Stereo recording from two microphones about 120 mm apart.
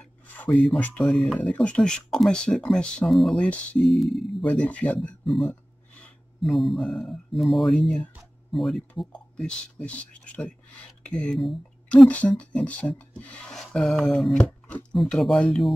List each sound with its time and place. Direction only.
0.0 s a sound: 5° left (ahead or behind)
1.0 s speech: centre (ahead or behind)
5.2 s speech: centre (ahead or behind)